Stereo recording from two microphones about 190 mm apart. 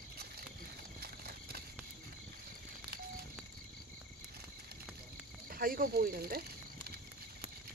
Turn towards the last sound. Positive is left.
turn(degrees=-55)  # may be behind; listen again after turning